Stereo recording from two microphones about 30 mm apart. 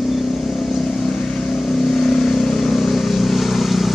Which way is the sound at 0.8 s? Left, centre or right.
Left.